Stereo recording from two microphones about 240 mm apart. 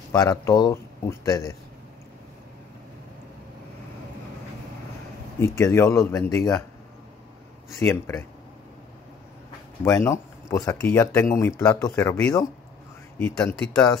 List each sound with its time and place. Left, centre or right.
0.1 s speech: centre
5.4 s speech: centre
7.8 s speech: centre
9.8 s speech: centre